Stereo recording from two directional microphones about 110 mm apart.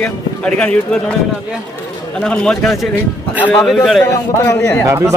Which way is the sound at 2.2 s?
5° left (ahead or behind).